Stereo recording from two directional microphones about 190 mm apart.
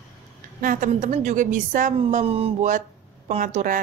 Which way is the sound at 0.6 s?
45° right (ahead or behind).